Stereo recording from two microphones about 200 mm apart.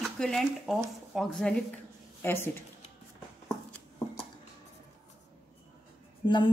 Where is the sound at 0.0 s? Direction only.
Centre (ahead or behind).